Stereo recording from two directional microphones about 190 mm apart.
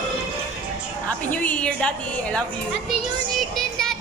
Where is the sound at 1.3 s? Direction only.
5° left (ahead or behind).